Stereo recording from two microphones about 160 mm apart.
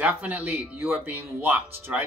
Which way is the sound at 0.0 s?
10° right (ahead or behind).